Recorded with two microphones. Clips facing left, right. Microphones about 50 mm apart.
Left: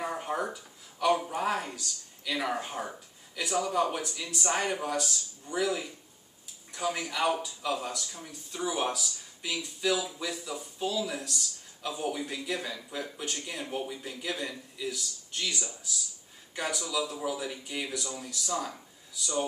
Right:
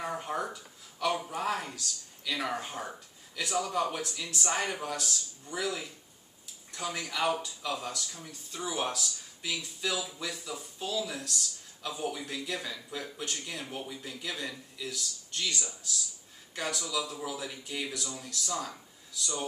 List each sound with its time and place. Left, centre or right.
0.0 s speech: centre